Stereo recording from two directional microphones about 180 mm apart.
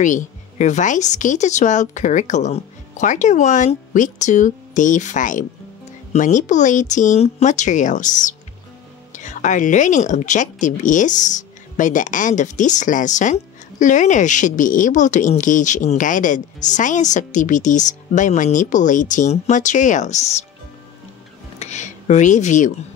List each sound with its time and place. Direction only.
0.0 s speech: 45° left (ahead or behind)
21.5 s speech: 40° left (ahead or behind)